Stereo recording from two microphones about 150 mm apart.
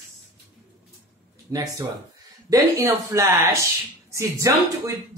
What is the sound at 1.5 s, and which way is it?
Speech, 20° right (ahead or behind).